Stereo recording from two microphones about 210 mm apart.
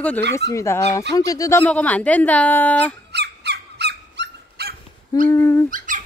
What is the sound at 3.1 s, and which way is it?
Bird, 55° right (ahead or behind).